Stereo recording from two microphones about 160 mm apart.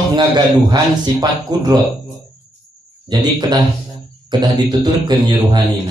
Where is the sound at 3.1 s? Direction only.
30° right (ahead or behind).